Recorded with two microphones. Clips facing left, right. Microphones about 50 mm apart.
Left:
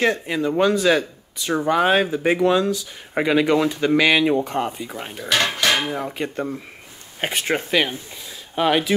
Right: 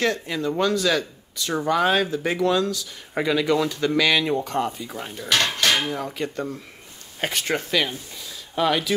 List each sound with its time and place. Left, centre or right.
0.0 s speech: left
5.1 s dishes: centre
7.2 s speech: left